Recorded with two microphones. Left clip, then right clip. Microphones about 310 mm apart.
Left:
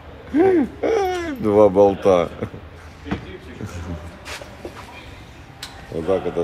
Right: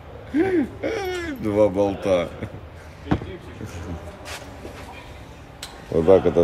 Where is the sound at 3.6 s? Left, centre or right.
Centre.